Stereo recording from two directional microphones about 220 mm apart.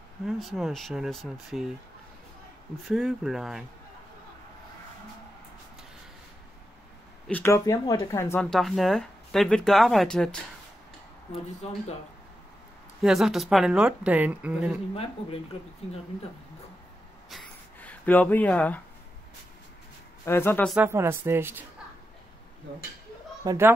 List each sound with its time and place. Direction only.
0.2 s speech: centre (ahead or behind)
2.9 s speech: centre (ahead or behind)
7.2 s speech: 10° left (ahead or behind)
13.0 s speech: centre (ahead or behind)
15.0 s speech: 25° left (ahead or behind)
17.3 s a sound: 5° left (ahead or behind)
20.2 s speech: 10° left (ahead or behind)
20.7 s speech: 10° right (ahead or behind)
23.4 s a child's voice: 15° right (ahead or behind)